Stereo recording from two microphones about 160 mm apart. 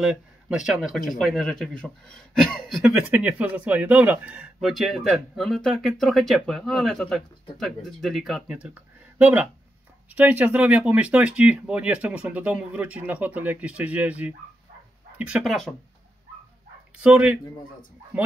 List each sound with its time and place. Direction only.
0.0 s speech: 5° right (ahead or behind)
16.9 s speech: 5° right (ahead or behind)